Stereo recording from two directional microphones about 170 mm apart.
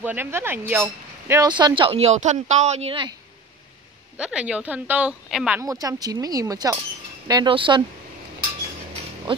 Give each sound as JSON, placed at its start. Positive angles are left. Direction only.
{"t": 0.0, "sound": "speech", "side_deg": -10}
{"t": 1.5, "sound": "speech", "side_deg": -30}
{"t": 4.2, "sound": "speech", "side_deg": -5}
{"t": 5.6, "sound": "speech", "side_deg": -20}